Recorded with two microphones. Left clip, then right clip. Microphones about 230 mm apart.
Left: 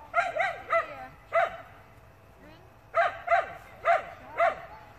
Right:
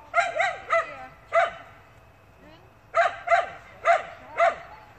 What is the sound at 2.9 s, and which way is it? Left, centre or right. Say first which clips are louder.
Dog: right 3 dB; right.